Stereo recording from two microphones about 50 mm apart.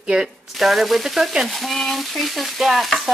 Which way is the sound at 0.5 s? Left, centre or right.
Centre.